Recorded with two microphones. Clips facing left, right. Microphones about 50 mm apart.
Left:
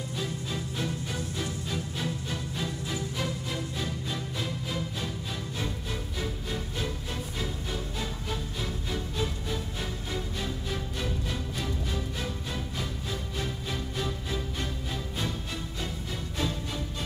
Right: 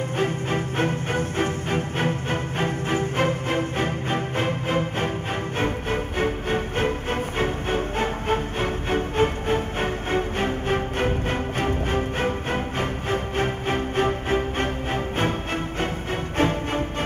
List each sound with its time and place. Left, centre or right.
0.2 s music: right
16.3 s music: right